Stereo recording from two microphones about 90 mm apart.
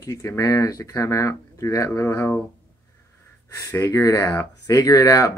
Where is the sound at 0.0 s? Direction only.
35° left (ahead or behind).